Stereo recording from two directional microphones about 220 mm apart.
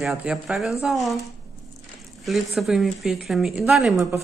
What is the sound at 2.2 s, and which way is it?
Speech, centre (ahead or behind).